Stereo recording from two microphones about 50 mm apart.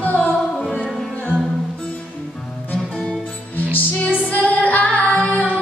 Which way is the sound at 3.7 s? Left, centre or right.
Left.